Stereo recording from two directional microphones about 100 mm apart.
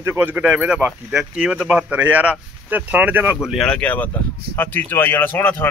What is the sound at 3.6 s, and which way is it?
A man's voice, 10° left (ahead or behind).